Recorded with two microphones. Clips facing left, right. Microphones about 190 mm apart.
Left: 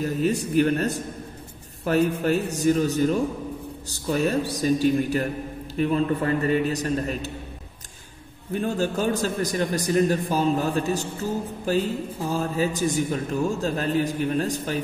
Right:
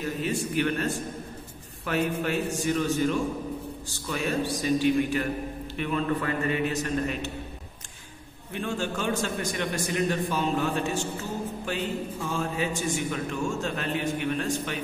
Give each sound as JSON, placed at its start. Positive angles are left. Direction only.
{"t": 0.0, "sound": "a man's voice", "side_deg": 40}
{"t": 8.5, "sound": "a man's voice", "side_deg": 40}